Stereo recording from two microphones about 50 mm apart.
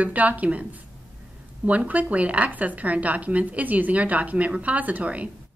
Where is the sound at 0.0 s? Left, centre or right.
Right.